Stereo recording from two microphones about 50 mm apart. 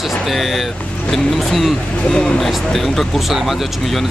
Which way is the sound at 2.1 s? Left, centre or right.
Centre.